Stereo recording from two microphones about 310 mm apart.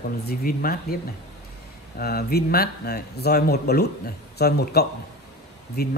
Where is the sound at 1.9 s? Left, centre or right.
Left.